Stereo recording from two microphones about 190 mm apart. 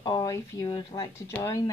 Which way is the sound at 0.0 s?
20° left (ahead or behind).